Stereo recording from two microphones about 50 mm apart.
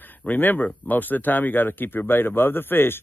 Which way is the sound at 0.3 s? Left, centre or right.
Left.